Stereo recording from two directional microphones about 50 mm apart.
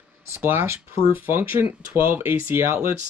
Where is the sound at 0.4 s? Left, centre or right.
Right.